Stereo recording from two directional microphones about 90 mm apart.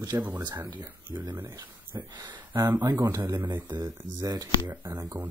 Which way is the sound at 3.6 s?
55° right (ahead or behind).